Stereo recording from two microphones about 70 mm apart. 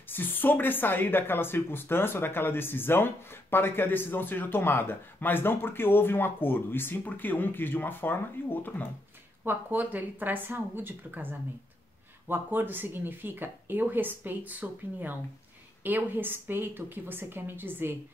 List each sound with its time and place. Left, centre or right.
0.1 s speech: left
9.4 s speech: right